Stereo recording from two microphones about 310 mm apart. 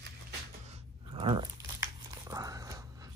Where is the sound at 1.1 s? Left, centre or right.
Centre.